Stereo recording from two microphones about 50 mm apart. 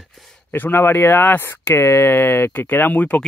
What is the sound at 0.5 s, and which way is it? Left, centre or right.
Speech, left.